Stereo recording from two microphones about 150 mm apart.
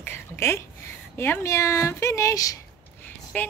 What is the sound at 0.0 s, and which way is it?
Speech, 15° left (ahead or behind).